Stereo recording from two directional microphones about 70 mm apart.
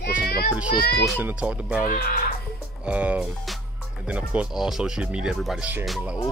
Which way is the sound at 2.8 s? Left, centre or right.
Centre.